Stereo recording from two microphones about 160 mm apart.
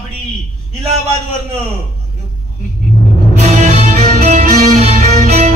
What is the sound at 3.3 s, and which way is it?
Music, 45° right (ahead or behind).